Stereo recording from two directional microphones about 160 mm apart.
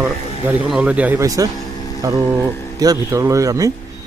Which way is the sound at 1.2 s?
20° right (ahead or behind).